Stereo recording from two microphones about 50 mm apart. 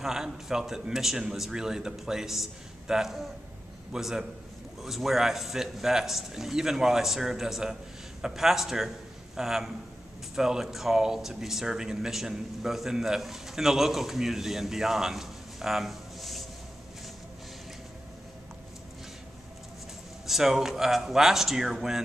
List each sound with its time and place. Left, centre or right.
0.0 s speech: centre
20.2 s speech: centre